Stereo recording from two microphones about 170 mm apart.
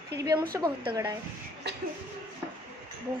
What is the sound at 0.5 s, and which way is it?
Speech, 15° right (ahead or behind).